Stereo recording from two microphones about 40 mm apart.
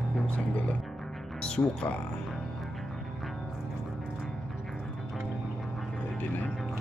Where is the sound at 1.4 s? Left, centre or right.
Left.